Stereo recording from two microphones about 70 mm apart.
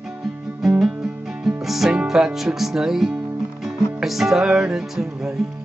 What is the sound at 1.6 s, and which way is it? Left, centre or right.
Music, centre.